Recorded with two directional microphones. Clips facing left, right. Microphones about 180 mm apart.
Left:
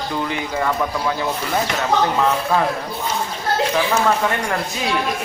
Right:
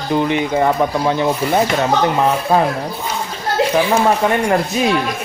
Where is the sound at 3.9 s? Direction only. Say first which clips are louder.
Right 4 dB; 25° right (ahead or behind).